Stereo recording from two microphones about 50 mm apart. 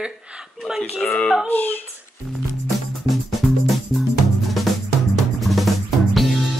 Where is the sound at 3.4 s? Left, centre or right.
Centre.